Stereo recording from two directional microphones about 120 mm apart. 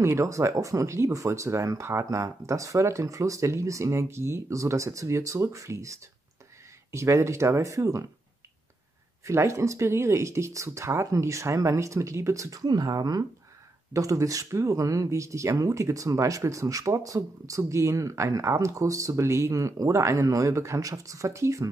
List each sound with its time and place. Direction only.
0.0 s speech: 25° right (ahead or behind)
9.2 s speech: 25° right (ahead or behind)